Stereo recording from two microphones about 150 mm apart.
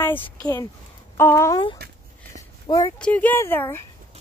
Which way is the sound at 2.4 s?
25° left (ahead or behind).